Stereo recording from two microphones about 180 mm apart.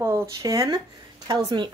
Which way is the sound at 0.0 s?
15° right (ahead or behind).